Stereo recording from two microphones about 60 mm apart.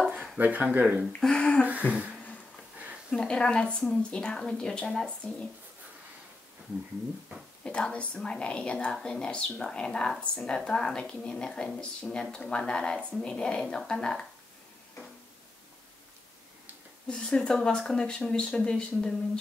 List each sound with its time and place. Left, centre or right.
0.4 s speech: right
1.2 s a sound: centre
1.9 s speech: right
3.1 s a woman's voice: centre
7.6 s a woman's voice: centre
17.1 s a woman's voice: centre